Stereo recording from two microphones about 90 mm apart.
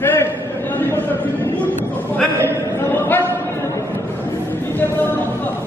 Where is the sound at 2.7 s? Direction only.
25° left (ahead or behind).